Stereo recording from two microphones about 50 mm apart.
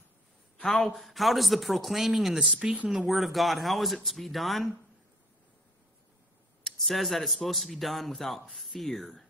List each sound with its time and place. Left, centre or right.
0.6 s speech: centre
2.3 s speech: centre
2.9 s speech: centre
6.6 s speech: centre